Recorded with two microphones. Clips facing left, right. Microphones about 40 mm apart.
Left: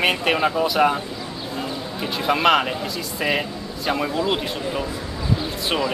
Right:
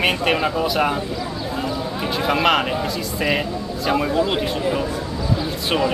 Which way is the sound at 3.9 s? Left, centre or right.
Centre.